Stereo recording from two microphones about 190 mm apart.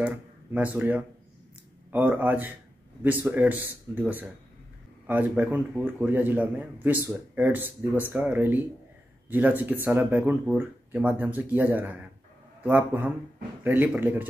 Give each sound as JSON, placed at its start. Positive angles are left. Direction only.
{"t": 0.0, "sound": "speech", "side_deg": -10}